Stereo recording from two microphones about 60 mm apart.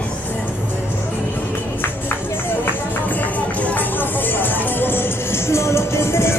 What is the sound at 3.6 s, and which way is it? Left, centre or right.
Music, left.